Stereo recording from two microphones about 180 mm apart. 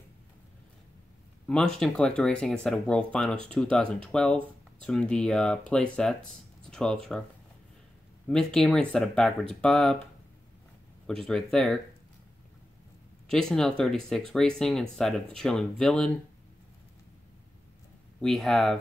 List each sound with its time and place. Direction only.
1.8 s speech: 5° left (ahead or behind)
8.3 s speech: 5° left (ahead or behind)
11.1 s speech: centre (ahead or behind)
13.3 s speech: 5° left (ahead or behind)
18.2 s speech: centre (ahead or behind)